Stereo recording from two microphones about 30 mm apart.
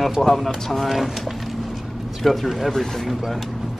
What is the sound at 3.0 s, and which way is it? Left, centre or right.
Speech, centre.